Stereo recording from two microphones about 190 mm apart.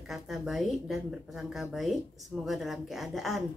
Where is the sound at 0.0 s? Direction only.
Centre (ahead or behind).